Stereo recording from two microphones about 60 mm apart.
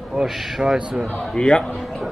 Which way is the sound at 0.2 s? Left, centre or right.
Centre.